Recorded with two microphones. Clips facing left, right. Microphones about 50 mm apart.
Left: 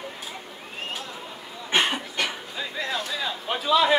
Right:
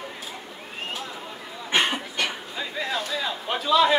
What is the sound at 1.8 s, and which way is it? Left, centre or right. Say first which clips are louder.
Cough: even; centre.